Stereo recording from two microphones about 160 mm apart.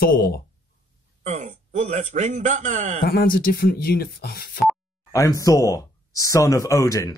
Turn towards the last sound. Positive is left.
turn(degrees=20)  # may be behind; listen again after turning